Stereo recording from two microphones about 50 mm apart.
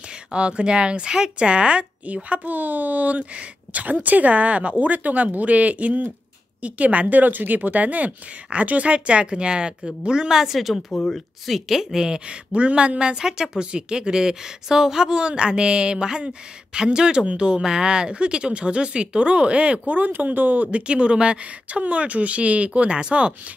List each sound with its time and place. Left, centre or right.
0.3 s speech: centre